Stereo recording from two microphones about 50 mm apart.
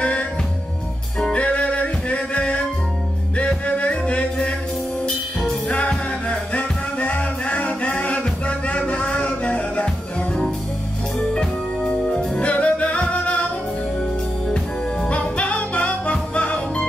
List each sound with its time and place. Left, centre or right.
0.0 s music: left
5.7 s music: left
12.4 s music: left
14.5 s music: centre
15.1 s music: left